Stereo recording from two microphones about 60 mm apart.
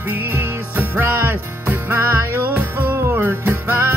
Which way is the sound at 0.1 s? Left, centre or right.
Right.